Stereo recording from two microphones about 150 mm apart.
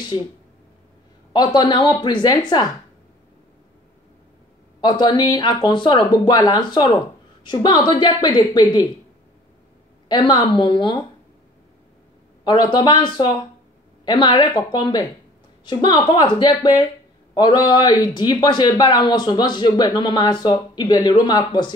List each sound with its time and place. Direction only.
1.3 s speech: 30° left (ahead or behind)
4.8 s speech: 30° left (ahead or behind)
10.0 s a woman's voice: 30° left (ahead or behind)
12.4 s a woman's voice: 30° left (ahead or behind)